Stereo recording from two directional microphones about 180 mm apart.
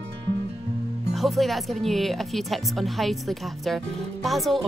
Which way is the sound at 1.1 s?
Centre (ahead or behind).